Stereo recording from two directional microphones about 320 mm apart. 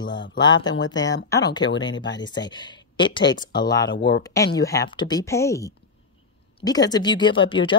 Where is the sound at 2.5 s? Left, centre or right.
Centre.